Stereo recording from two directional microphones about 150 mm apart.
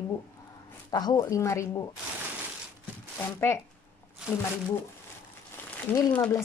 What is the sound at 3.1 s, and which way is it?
Speech, 15° left (ahead or behind).